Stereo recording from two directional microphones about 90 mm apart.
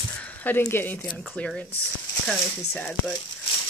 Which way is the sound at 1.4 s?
15° left (ahead or behind).